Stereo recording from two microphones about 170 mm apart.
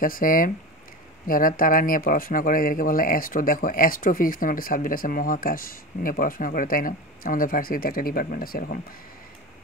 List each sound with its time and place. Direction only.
0.0 s speech: 55° left (ahead or behind)